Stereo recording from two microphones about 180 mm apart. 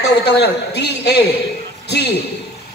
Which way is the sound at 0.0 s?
70° left (ahead or behind).